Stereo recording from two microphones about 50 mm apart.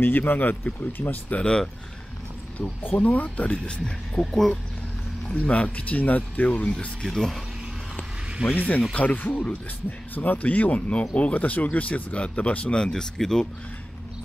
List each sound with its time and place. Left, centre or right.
0.0 s speech: left
1.4 s speech: centre
2.6 s speech: left
3.5 s speech: centre
5.3 s speech: left
7.0 s speech: centre
8.5 s speech: left; by 13.5 s centre